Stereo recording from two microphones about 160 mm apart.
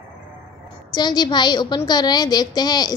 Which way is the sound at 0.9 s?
25° left (ahead or behind).